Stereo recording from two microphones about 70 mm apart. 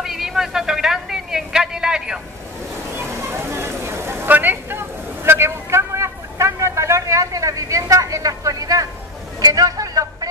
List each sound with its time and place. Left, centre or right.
0.0 s a sound: centre
3.0 s vehicle: right
9.4 s speech: right